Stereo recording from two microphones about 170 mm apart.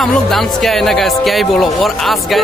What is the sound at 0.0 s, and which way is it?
Speech, centre (ahead or behind).